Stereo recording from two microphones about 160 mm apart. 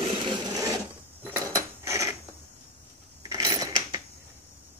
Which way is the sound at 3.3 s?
20° right (ahead or behind).